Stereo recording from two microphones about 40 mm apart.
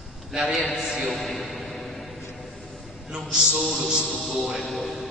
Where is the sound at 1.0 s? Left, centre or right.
Centre.